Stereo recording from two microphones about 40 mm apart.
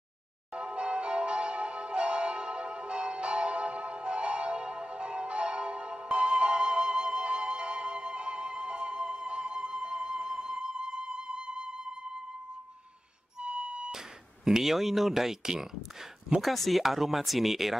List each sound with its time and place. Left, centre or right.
0.5 s church bell: right
13.4 s music: right
13.9 s speech: centre